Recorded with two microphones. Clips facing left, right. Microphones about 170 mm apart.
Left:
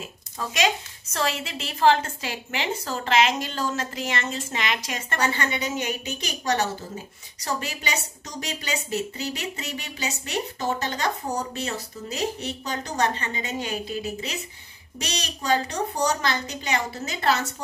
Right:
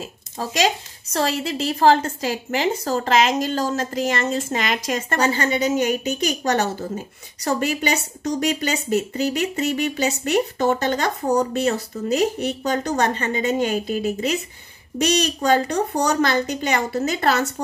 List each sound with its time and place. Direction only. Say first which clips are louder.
0.4 s a woman's voice: right 4 dB; 35° right (ahead or behind); by 17.4 s 50° right (ahead or behind)